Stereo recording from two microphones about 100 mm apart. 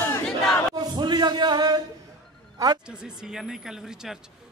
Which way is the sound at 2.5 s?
40° right (ahead or behind).